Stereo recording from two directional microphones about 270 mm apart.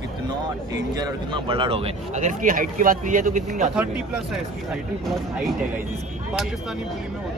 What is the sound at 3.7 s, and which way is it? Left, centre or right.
Speech, centre.